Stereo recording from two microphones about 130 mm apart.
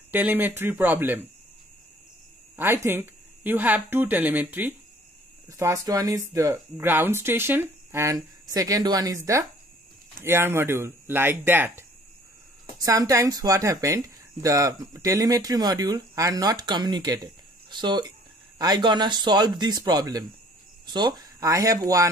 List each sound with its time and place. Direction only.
0.1 s speech: 15° right (ahead or behind)
2.5 s speech: 20° right (ahead or behind)
5.5 s speech: 25° right (ahead or behind)
12.7 s speech: 30° right (ahead or behind)